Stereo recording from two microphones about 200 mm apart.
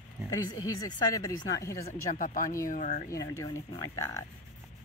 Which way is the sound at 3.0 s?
15° left (ahead or behind).